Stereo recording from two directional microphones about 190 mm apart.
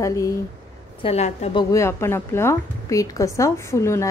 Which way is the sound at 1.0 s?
35° left (ahead or behind).